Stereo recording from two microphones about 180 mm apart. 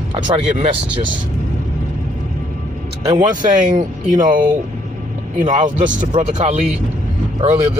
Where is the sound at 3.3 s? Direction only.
45° right (ahead or behind).